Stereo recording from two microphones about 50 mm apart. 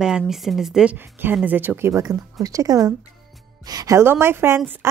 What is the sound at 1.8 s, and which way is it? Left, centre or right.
Speech, right.